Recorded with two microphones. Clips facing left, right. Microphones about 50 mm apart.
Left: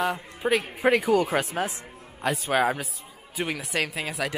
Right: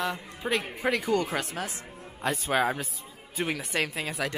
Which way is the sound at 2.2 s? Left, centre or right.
Centre.